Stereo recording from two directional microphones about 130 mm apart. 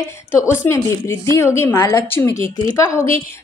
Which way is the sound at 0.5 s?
20° left (ahead or behind).